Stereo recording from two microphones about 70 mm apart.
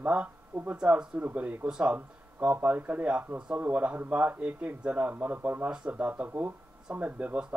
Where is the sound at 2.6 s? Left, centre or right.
Right.